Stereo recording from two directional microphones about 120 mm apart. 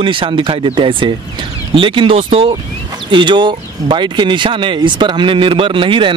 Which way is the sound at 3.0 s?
40° right (ahead or behind).